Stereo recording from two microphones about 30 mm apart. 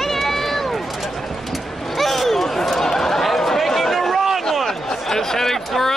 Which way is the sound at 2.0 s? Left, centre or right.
Centre.